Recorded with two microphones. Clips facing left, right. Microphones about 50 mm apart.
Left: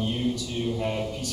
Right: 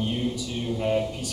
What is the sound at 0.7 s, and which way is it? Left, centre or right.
Speech, centre.